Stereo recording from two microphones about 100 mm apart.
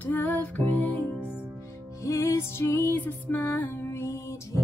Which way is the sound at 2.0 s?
30° left (ahead or behind).